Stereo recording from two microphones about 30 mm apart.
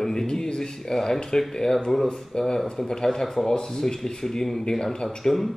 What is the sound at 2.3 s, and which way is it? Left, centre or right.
Speech, left.